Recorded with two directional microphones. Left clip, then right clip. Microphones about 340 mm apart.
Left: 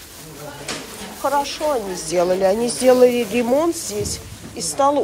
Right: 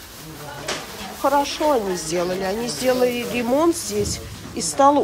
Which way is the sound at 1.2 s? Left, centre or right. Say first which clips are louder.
Right 1 dB; centre.